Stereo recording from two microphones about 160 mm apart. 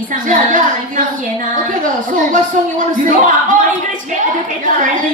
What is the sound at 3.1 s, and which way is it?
Speech, 50° right (ahead or behind).